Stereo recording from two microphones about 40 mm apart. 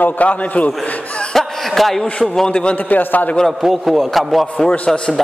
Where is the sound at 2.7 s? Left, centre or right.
Left.